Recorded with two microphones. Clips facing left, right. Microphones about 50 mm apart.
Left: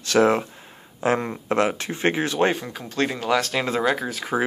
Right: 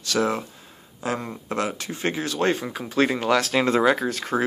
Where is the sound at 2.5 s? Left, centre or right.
Centre.